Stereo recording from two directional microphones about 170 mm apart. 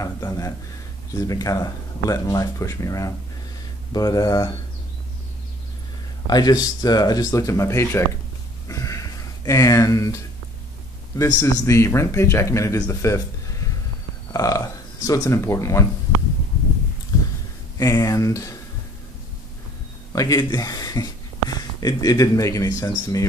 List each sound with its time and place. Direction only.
0.0 s a sound: 20° left (ahead or behind)
1.1 s speech: 20° left (ahead or behind)
6.2 s speech: 25° left (ahead or behind)
8.6 s a sound: 20° left (ahead or behind)
11.1 s a man's voice: 20° left (ahead or behind)
17.1 s heart sounds: 20° left (ahead or behind)
17.7 s speech: 20° left (ahead or behind)
20.1 s speech: 20° left (ahead or behind)